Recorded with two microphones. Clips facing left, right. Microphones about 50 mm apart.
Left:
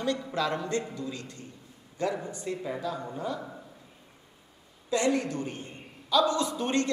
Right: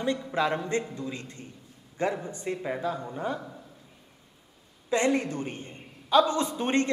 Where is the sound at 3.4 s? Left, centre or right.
Centre.